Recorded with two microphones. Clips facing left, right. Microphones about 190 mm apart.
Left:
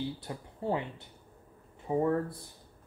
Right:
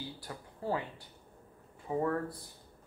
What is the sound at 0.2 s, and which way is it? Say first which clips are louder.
Speech: left 4 dB; 25° left (ahead or behind).